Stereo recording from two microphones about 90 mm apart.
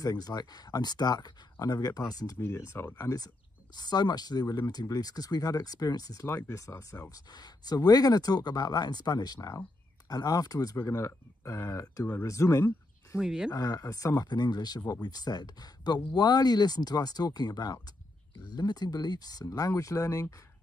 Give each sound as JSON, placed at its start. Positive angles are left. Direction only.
{"t": 0.0, "sound": "speech", "side_deg": 45}
{"t": 2.3, "sound": "speech", "side_deg": 30}
{"t": 3.7, "sound": "speech", "side_deg": 50}
{"t": 7.1, "sound": "speech", "side_deg": 50}
{"t": 10.8, "sound": "speech", "side_deg": 30}
{"t": 13.2, "sound": "speech", "side_deg": -5}
{"t": 13.5, "sound": "speech", "side_deg": 40}